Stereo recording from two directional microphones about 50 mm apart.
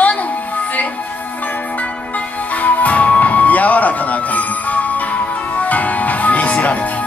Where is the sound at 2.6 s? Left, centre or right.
Left.